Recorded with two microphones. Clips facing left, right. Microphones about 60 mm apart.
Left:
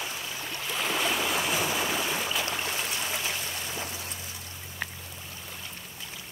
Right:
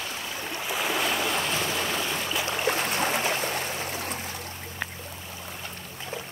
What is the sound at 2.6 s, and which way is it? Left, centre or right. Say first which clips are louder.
Stream: right 7 dB; right.